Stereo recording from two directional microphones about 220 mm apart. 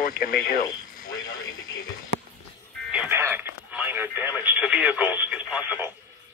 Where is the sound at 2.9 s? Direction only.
10° right (ahead or behind).